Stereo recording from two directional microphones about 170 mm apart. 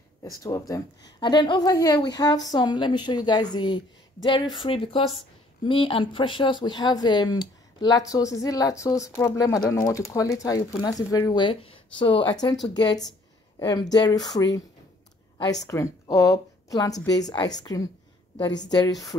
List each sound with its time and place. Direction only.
0.2 s a woman's voice: 20° left (ahead or behind)
13.6 s a woman's voice: 25° left (ahead or behind)
15.6 s a woman's voice: 20° left (ahead or behind)